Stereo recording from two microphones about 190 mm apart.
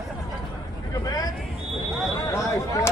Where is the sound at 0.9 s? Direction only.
20° left (ahead or behind).